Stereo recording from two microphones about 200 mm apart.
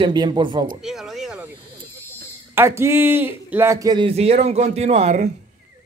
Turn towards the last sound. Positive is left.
turn(degrees=-35)  # may be behind; listen again after turning